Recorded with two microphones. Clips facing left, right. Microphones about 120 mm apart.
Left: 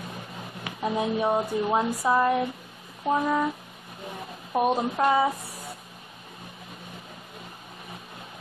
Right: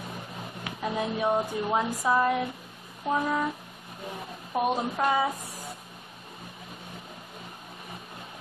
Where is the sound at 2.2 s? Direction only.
30° left (ahead or behind).